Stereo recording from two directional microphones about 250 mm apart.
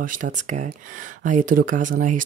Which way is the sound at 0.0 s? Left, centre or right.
Right.